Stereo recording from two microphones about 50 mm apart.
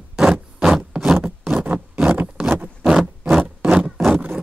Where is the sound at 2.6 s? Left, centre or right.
Centre.